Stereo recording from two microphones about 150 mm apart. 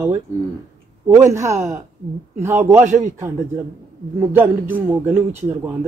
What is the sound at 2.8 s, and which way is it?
Speech, 55° right (ahead or behind).